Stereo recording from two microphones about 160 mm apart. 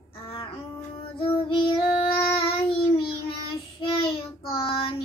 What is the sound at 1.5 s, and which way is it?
Child singing, 35° left (ahead or behind).